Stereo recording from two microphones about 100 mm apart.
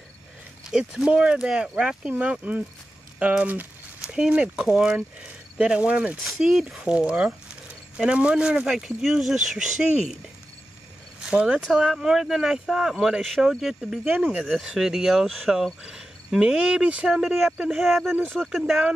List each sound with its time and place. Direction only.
0.7 s speech: 5° right (ahead or behind)
6.2 s speech: centre (ahead or behind)
11.2 s speech: 10° right (ahead or behind)
14.0 s speech: 20° right (ahead or behind)
14.3 s speech: 5° right (ahead or behind)